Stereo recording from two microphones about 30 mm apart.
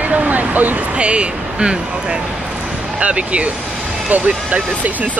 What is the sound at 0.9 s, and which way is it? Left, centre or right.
Speech, right.